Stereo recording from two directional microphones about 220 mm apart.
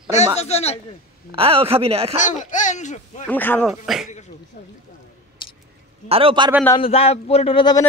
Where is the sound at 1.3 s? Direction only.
25° right (ahead or behind).